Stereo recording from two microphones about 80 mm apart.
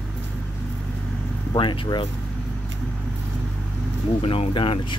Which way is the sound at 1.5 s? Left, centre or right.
Left.